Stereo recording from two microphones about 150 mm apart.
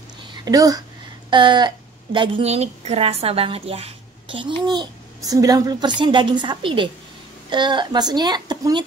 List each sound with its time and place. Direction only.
0.3 s a woman's voice: 25° right (ahead or behind)